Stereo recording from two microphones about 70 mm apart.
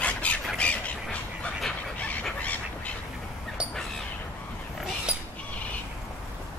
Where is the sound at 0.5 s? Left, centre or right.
Centre.